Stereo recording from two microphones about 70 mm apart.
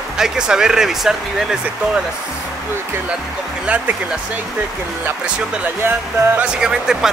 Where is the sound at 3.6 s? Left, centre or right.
Centre.